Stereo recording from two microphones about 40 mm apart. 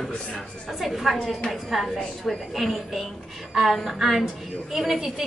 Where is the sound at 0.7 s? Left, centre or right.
Centre.